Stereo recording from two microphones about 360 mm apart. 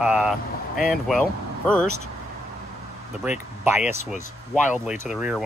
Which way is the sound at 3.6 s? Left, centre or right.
Centre.